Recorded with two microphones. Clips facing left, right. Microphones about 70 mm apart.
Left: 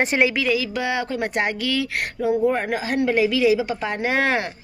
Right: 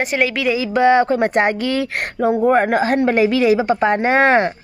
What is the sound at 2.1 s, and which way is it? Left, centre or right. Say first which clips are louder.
A woman's voice: right 6 dB; right.